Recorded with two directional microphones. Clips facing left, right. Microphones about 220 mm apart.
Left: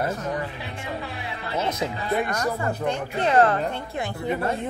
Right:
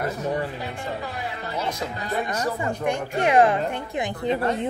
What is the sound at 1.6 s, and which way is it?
Music, 20° left (ahead or behind).